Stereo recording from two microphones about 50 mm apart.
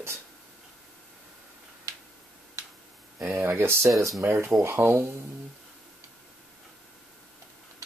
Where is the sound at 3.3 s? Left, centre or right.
Right.